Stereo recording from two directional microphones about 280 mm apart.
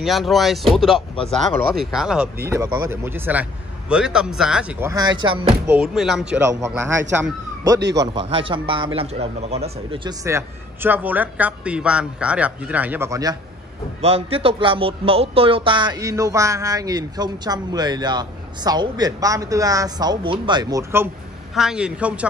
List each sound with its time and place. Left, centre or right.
0.0 s speech: centre
5.7 s speech: centre
7.8 s a man's voice: right
8.1 s speech: centre